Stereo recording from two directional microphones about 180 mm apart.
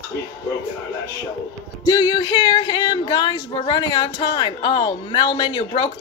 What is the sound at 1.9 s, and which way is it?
Speech, 25° left (ahead or behind).